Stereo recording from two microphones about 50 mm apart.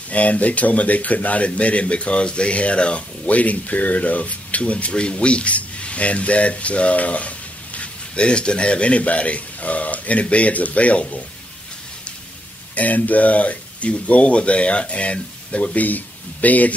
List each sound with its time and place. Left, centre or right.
0.1 s speech: left
12.7 s speech: left